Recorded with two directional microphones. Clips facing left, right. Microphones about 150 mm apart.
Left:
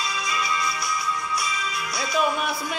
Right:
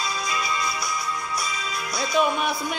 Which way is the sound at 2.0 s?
Centre (ahead or behind).